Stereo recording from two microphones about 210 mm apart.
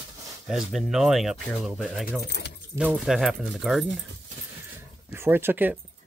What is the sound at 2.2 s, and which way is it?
Speech, 55° left (ahead or behind).